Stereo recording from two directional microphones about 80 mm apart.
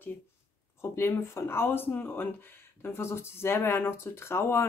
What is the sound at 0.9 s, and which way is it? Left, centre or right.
Speech, left.